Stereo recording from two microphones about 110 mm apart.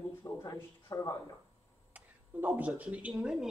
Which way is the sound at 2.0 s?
15° right (ahead or behind).